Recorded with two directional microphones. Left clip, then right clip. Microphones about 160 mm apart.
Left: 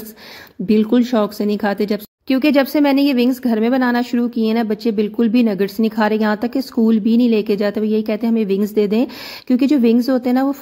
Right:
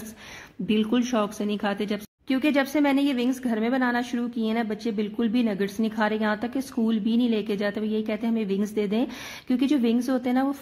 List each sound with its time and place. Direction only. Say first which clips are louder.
0.7 s speech: left 9 dB; 35° left (ahead or behind)